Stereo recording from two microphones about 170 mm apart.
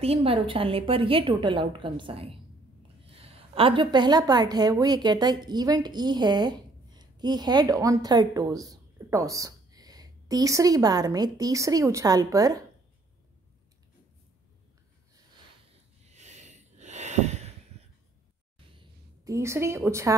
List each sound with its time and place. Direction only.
0.0 s a woman's voice: 35° right (ahead or behind)
16.1 s snort: 45° right (ahead or behind)
18.8 s a woman's voice: 20° right (ahead or behind)